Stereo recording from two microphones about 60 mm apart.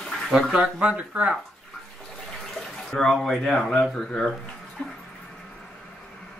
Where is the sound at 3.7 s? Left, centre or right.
Centre.